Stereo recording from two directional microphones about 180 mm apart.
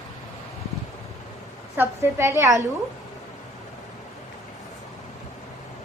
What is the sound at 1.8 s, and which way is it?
Speech, 15° right (ahead or behind).